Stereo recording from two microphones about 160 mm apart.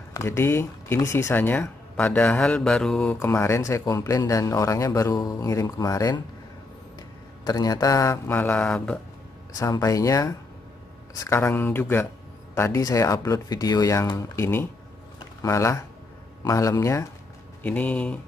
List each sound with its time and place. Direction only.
0.1 s speech: 15° left (ahead or behind)
7.4 s speech: 25° left (ahead or behind); by 9.0 s 5° left (ahead or behind)
9.6 s speech: 20° left (ahead or behind)
15.1 s a sound: 20° left (ahead or behind)
16.4 s speech: 20° left (ahead or behind)